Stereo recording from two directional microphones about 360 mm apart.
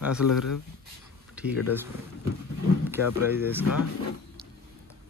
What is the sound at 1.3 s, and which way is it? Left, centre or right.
Speech, centre.